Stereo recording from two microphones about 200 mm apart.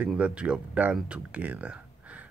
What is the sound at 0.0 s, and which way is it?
Speech, 5° right (ahead or behind).